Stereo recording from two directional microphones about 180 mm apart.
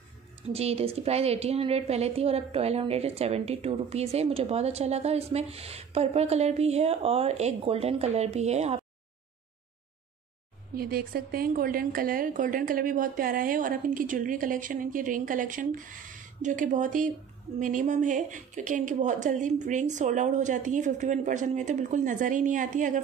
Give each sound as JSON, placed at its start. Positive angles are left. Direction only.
{"t": 0.5, "sound": "a woman's voice", "side_deg": -35}
{"t": 10.7, "sound": "speech", "side_deg": -55}